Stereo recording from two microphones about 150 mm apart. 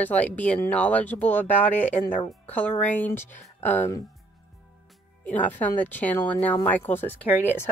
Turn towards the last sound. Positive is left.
turn(degrees=15)  # may be behind; listen again after turning